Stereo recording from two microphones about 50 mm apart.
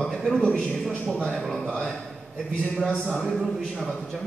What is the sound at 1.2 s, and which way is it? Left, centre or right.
Speech, centre.